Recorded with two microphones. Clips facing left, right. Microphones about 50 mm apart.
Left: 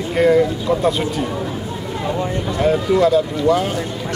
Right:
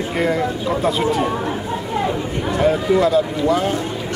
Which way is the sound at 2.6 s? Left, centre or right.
Centre.